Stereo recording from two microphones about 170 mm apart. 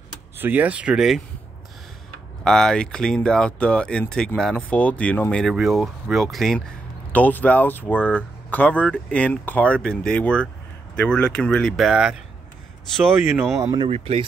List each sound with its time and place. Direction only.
0.4 s speech: 10° right (ahead or behind)
2.4 s speech: 5° left (ahead or behind)
13.6 s speech: 20° right (ahead or behind)
13.8 s speech: 35° right (ahead or behind)